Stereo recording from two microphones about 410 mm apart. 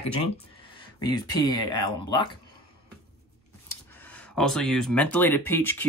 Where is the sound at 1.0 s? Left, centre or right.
Centre.